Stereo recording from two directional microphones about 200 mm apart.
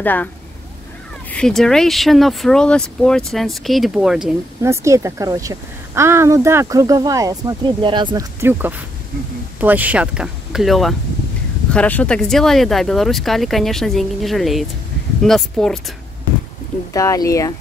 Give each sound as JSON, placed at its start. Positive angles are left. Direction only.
{"t": 0.0, "sound": "speech", "side_deg": 10}
{"t": 1.3, "sound": "speech", "side_deg": 5}
{"t": 4.6, "sound": "a woman's voice", "side_deg": -15}
{"t": 16.9, "sound": "speech", "side_deg": 15}